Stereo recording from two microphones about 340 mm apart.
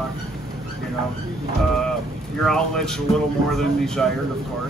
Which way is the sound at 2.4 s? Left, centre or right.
Centre.